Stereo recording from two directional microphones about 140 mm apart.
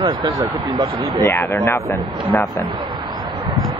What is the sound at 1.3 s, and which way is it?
Speech, 15° left (ahead or behind).